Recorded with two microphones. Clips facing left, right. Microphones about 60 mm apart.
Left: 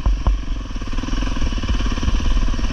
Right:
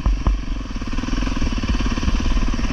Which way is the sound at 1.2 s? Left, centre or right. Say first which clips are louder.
Right 2 dB; right.